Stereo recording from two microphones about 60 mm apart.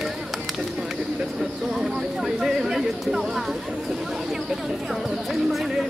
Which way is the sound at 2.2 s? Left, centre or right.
Centre.